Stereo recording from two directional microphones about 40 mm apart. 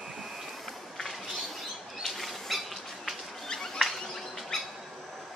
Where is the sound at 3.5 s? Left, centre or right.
Centre.